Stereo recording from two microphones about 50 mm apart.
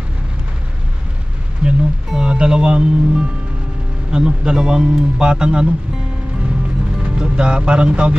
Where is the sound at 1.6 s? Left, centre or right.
Right.